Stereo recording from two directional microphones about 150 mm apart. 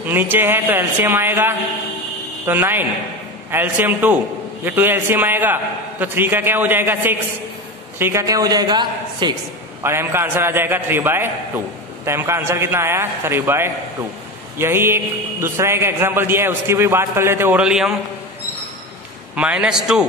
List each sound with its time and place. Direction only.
0.0 s a man's voice: 10° right (ahead or behind); by 9.3 s 30° right (ahead or behind)
9.8 s a man's voice: 15° right (ahead or behind)
19.3 s a man's voice: 10° right (ahead or behind)